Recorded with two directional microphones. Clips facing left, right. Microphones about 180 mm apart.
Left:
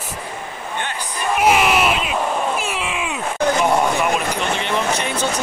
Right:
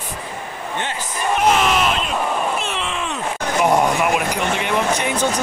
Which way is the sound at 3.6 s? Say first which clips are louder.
Right 5 dB; 15° right (ahead or behind).